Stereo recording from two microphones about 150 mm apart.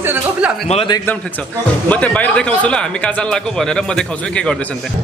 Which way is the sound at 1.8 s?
10° left (ahead or behind).